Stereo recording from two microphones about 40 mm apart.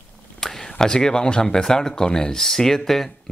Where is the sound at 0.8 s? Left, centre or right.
Centre.